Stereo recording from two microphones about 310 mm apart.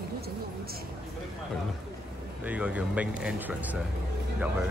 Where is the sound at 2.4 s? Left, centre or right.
Centre.